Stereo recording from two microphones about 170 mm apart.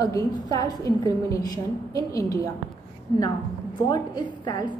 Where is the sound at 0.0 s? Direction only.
20° left (ahead or behind).